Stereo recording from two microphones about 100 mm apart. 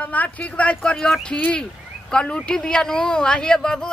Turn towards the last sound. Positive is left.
turn(degrees=5)  # may be behind; listen again after turning